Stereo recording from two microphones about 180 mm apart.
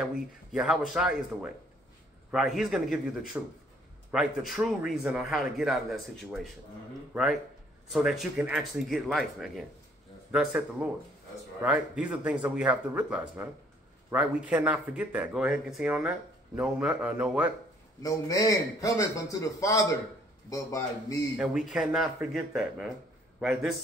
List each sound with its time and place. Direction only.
0.1 s a man's voice: 5° right (ahead or behind)
7.9 s a man's voice: 5° right (ahead or behind)
18.0 s a man's voice: 20° left (ahead or behind)
21.4 s a man's voice: 5° right (ahead or behind)